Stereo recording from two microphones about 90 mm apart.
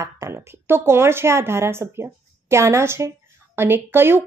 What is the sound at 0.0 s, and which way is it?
Speech, 35° right (ahead or behind).